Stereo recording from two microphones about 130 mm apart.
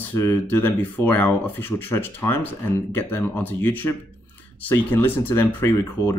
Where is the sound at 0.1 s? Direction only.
20° left (ahead or behind).